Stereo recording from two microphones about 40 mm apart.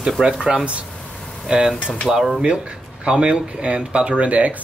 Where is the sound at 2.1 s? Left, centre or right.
Centre.